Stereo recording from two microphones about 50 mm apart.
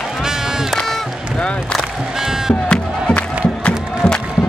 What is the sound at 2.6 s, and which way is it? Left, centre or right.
Music, centre.